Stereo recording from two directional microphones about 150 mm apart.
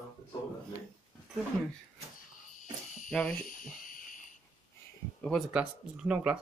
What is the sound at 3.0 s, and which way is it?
Speech, 5° left (ahead or behind).